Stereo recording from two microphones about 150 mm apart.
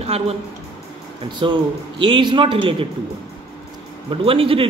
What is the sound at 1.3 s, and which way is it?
A man's voice, 30° right (ahead or behind).